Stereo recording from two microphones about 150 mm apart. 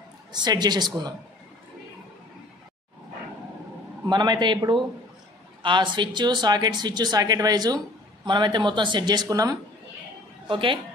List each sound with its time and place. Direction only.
0.3 s speech: 30° right (ahead or behind)
4.1 s speech: 30° right (ahead or behind)
10.5 s a woman's voice: 35° right (ahead or behind)